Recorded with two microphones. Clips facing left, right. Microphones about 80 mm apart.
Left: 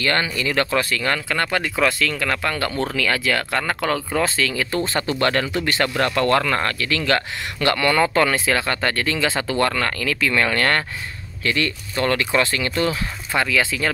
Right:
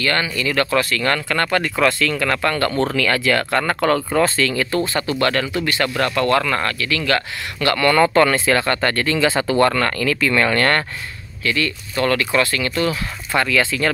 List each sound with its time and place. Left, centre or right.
0.0 s speech: left; by 4.6 s centre
4.8 s speech: left
8.0 s speech: centre
11.4 s speech: left
13.3 s speech: centre